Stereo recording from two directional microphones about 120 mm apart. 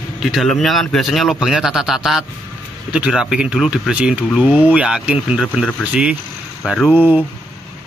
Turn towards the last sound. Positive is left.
turn(degrees=-15)  # may be behind; listen again after turning